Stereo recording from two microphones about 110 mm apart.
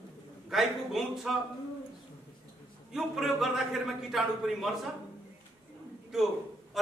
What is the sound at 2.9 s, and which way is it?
A man's voice, 5° right (ahead or behind).